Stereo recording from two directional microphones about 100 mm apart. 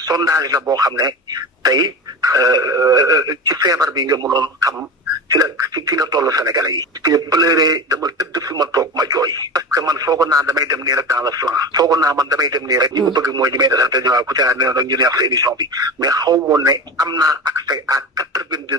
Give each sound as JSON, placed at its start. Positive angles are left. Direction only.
{"t": 0.0, "sound": "speech", "side_deg": -40}